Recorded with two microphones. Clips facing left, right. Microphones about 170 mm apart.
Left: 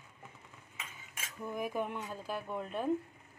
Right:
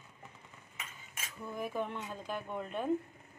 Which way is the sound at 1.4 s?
10° left (ahead or behind).